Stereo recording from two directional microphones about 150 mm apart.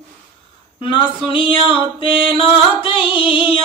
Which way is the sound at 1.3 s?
35° left (ahead or behind).